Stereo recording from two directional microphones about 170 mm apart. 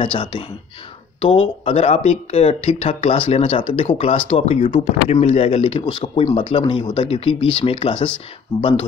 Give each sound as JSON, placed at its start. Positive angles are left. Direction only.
{"t": 0.0, "sound": "speech", "side_deg": 30}